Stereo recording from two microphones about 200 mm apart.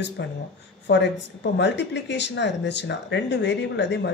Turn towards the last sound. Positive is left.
turn(degrees=60)  # may be behind; listen again after turning